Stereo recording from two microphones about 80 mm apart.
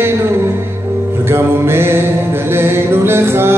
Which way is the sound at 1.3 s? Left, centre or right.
Right.